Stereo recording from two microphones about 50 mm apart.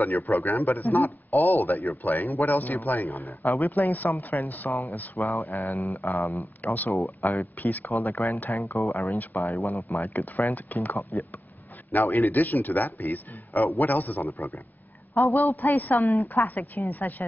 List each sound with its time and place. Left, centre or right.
0.0 s a man's voice: left
3.3 s speech: left
3.6 s a man's voice: left
8.7 s speech: left
9.9 s a man's voice: left
11.0 s speech: left
11.9 s a man's voice: left
15.1 s speech: left
15.5 s a man's voice: left